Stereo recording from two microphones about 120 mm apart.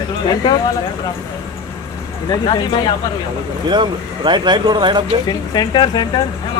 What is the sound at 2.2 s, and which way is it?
Speech, 40° left (ahead or behind).